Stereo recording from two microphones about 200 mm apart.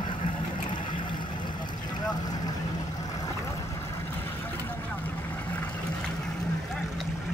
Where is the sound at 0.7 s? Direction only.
25° left (ahead or behind).